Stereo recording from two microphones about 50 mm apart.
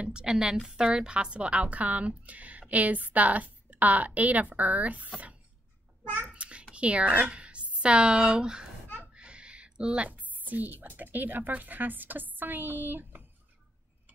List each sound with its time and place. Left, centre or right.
0.0 s a woman's voice: centre
6.3 s a sound: right
6.7 s a woman's voice: right